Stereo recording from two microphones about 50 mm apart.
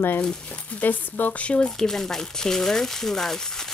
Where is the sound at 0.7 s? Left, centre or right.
Left.